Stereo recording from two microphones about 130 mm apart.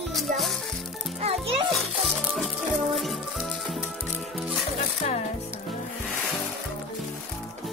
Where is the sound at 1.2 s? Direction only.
50° right (ahead or behind).